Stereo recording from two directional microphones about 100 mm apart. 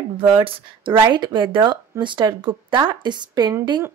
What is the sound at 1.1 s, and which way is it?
Speech, 55° right (ahead or behind).